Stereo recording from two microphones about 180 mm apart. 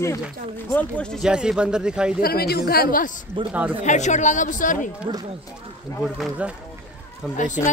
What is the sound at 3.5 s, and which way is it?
Speech, 5° right (ahead or behind).